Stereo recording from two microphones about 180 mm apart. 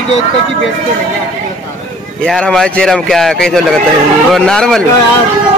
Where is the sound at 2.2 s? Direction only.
5° left (ahead or behind).